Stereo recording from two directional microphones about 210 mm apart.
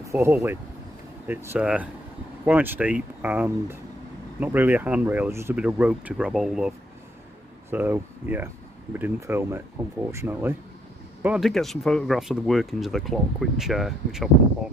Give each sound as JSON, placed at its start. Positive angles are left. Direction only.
{"t": 0.0, "sound": "speech", "side_deg": -15}
{"t": 7.7, "sound": "speech", "side_deg": -10}